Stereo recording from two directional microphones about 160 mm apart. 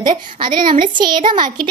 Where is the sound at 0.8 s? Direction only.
30° right (ahead or behind).